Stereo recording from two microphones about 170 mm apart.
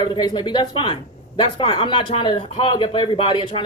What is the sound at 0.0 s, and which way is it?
Speech, 25° left (ahead or behind).